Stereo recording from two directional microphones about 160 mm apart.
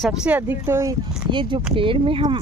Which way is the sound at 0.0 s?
5° right (ahead or behind).